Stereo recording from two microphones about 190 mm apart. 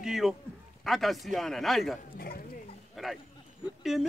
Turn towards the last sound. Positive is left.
turn(degrees=0)  # may be behind; listen again after turning